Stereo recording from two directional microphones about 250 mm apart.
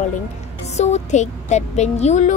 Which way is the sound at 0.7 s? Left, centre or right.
Left.